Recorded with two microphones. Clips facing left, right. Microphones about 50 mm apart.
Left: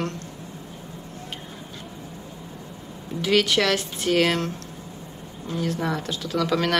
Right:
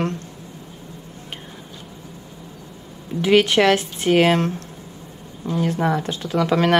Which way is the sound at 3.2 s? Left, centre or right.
Right.